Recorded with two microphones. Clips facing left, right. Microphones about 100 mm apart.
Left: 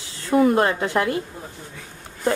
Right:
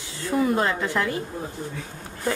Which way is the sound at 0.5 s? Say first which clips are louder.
Left 4 dB; 60° left (ahead or behind).